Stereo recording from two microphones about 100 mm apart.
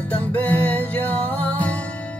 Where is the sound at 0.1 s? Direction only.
15° left (ahead or behind).